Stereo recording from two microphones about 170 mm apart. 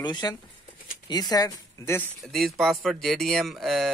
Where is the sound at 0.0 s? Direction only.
25° left (ahead or behind).